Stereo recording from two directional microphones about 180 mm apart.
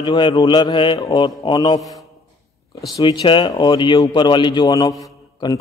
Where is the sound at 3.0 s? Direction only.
25° left (ahead or behind).